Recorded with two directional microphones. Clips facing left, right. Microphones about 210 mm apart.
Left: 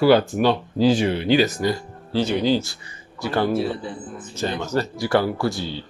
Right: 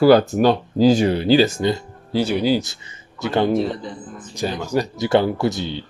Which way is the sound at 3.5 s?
10° left (ahead or behind).